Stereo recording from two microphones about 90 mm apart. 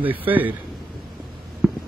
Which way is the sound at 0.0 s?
20° right (ahead or behind).